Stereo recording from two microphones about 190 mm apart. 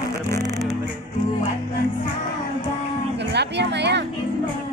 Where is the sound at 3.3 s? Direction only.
65° right (ahead or behind).